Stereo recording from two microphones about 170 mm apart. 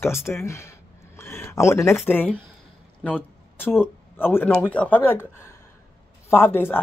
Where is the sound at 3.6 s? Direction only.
10° left (ahead or behind).